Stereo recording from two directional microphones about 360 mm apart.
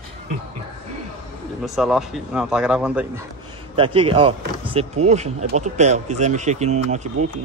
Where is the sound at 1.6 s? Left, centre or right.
Centre.